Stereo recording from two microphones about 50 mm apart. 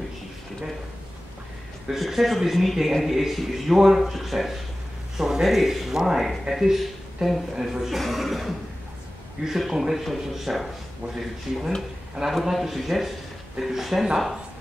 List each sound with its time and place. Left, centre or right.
1.9 s a man's voice: centre
11.5 s speech: centre
12.3 s a man's voice: centre